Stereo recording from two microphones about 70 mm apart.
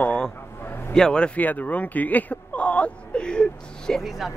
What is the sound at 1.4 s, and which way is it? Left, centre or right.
Speech, left.